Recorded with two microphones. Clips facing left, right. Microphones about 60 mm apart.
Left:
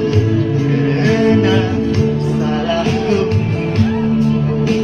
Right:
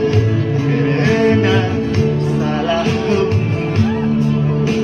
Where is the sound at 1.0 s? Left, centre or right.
Right.